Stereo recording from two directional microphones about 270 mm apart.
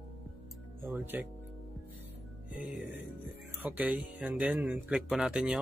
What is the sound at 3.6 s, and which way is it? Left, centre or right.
Speech, centre.